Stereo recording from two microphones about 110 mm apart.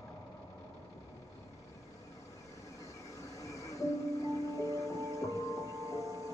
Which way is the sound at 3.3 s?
30° left (ahead or behind).